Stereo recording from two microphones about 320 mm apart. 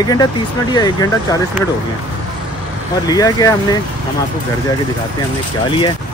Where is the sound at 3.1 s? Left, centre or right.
Centre.